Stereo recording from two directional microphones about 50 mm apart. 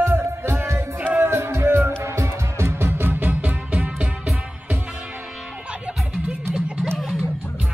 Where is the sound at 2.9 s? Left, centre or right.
Right.